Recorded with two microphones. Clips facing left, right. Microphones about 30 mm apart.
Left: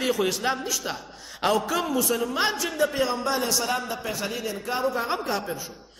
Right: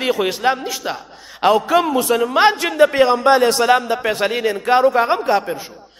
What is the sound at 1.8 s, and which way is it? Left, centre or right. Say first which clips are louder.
A man's voice: right 8 dB; right.